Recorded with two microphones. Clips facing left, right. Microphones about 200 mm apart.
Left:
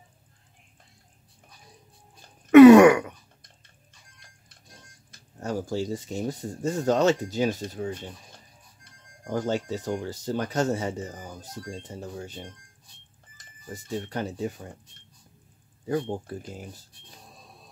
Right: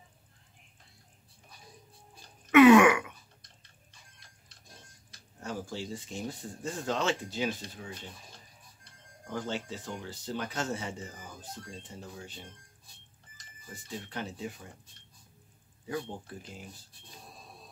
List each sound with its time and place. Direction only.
2.5 s throat clearing: 40° left (ahead or behind)
5.1 s speech: 45° left (ahead or behind)
9.2 s speech: 40° left (ahead or behind)
13.7 s speech: 45° left (ahead or behind)
15.9 s speech: 45° left (ahead or behind)